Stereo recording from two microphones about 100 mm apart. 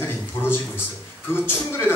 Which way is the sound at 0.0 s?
25° left (ahead or behind).